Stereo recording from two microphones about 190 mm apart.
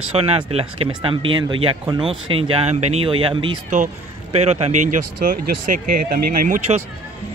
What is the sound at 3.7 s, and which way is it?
Speech, 35° right (ahead or behind).